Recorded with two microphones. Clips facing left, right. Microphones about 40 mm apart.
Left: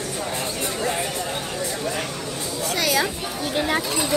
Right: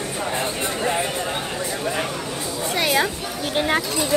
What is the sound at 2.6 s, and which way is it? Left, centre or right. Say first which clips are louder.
Speech: right 2 dB; right.